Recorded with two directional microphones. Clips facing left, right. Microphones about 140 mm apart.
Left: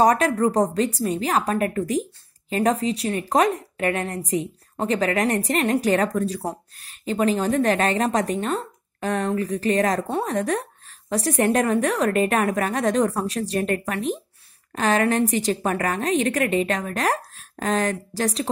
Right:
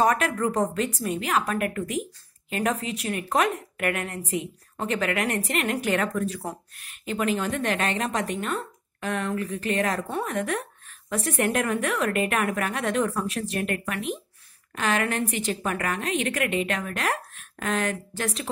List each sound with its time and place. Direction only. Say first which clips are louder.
0.0 s a woman's voice: left 5 dB; 35° left (ahead or behind)